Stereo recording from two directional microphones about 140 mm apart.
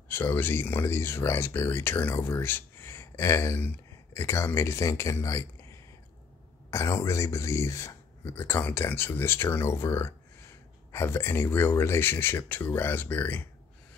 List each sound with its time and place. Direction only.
0.1 s speech: 15° left (ahead or behind)
6.7 s speech: 20° left (ahead or behind)